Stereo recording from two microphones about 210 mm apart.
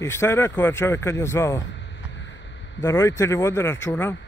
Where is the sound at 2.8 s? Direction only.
15° left (ahead or behind).